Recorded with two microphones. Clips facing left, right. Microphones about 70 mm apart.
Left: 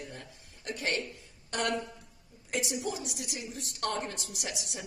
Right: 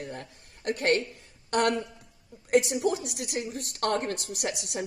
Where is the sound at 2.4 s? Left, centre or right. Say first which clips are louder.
Right 10 dB; right.